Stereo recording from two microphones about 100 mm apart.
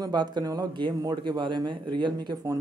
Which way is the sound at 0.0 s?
45° right (ahead or behind).